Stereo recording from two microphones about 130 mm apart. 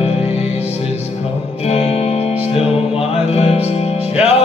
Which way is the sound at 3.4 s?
50° left (ahead or behind).